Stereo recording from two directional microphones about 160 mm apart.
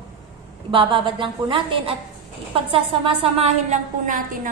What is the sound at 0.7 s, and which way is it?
A woman's voice, 35° right (ahead or behind).